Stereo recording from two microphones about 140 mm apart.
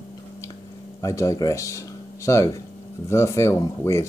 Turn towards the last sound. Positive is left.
turn(degrees=20)  # may be behind; listen again after turning